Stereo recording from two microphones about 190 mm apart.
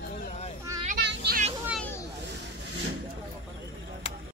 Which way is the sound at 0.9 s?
60° right (ahead or behind).